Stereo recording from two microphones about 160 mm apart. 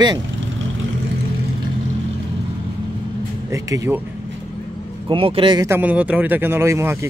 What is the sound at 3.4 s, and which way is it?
Speech, 20° right (ahead or behind).